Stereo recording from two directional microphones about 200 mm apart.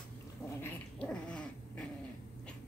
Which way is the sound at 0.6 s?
5° left (ahead or behind).